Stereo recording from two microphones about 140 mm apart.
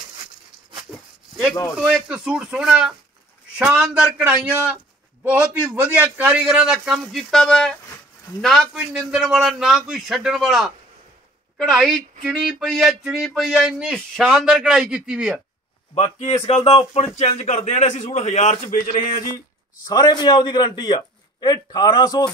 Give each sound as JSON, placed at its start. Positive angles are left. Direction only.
{"t": 1.3, "sound": "a sound", "side_deg": 0}
{"t": 1.8, "sound": "speech", "side_deg": -5}
{"t": 15.9, "sound": "a man's voice", "side_deg": 45}
{"t": 19.9, "sound": "a man's voice", "side_deg": 30}